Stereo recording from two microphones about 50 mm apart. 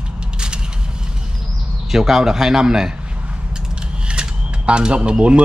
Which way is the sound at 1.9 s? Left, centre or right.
Centre.